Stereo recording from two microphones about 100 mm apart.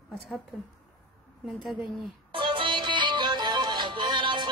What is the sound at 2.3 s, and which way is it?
Music, 60° right (ahead or behind).